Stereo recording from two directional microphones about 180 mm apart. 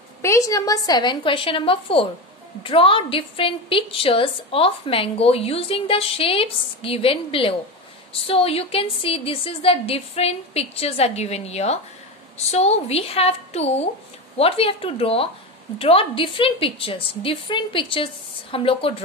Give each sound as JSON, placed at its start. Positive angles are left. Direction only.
{"t": 0.2, "sound": "a woman's voice", "side_deg": 15}